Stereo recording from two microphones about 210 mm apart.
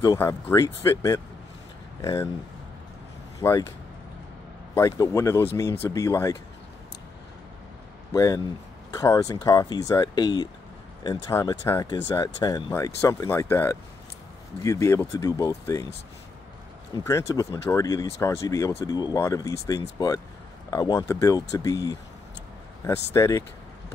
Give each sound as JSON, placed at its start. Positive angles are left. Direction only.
{"t": 0.0, "sound": "speech", "side_deg": 15}
{"t": 3.3, "sound": "speech", "side_deg": 15}
{"t": 4.7, "sound": "speech", "side_deg": 15}
{"t": 8.1, "sound": "speech", "side_deg": 15}
{"t": 16.9, "sound": "speech", "side_deg": 15}
{"t": 23.1, "sound": "speech", "side_deg": 15}